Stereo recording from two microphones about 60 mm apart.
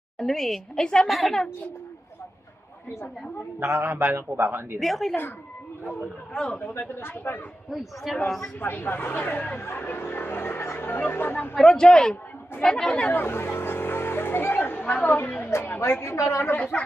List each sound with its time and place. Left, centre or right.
0.2 s a woman's voice: centre
1.0 s a man's voice: centre
3.5 s a man's voice: right
4.7 s a man's voice: centre
6.3 s a woman's voice: centre
6.8 s speech: left
7.7 s a man's voice: centre
8.5 s speech: left
11.5 s a woman's voice: centre
13.1 s vehicle: left
14.9 s a woman's voice: left
15.8 s a woman's voice: left
16.7 s speech: centre